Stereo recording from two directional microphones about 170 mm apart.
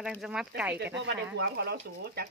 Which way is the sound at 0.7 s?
85° right.